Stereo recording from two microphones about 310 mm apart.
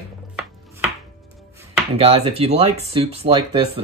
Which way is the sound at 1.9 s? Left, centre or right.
Centre.